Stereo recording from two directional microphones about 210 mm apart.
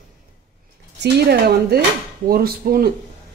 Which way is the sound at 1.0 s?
50° right (ahead or behind).